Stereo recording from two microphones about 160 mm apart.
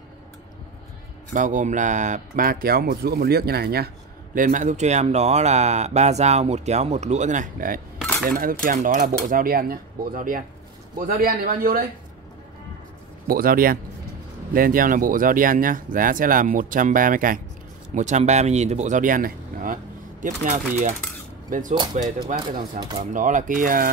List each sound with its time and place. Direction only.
1.3 s speech: 55° right (ahead or behind); by 3.9 s 75° right (ahead or behind)
4.4 s speech: 50° right (ahead or behind); by 11.8 s 70° right (ahead or behind)
13.3 s speech: 65° right (ahead or behind)
17.9 s speech: 45° right (ahead or behind)
22.5 s speech: 70° right (ahead or behind)